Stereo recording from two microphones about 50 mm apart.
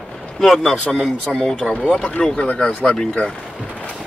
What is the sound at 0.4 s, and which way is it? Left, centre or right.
Speech, centre.